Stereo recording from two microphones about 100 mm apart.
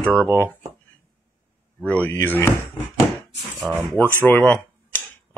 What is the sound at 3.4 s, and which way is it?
Speech, centre (ahead or behind).